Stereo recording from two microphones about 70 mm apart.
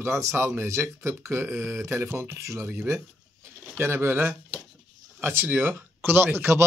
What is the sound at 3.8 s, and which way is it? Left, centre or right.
Speech, right.